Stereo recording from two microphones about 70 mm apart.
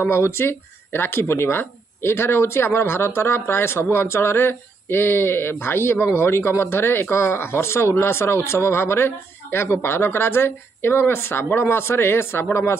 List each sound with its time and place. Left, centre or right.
0.0 s speech: left